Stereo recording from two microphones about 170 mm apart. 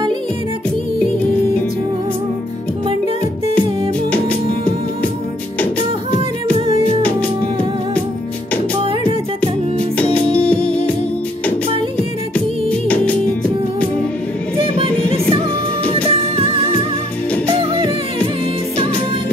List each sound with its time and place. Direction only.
9.9 s music: 10° left (ahead or behind)
10.6 s music: 35° right (ahead or behind)
12.6 s music: 10° left (ahead or behind)
14.6 s music: 35° right (ahead or behind)